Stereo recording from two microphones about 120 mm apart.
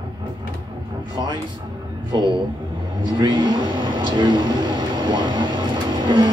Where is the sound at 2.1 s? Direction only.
40° right (ahead or behind).